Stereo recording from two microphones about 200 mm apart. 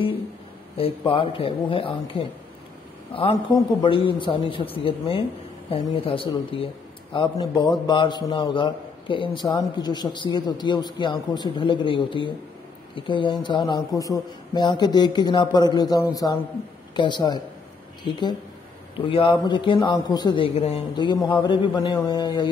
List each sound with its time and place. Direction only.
0.7 s a man's voice: 25° left (ahead or behind)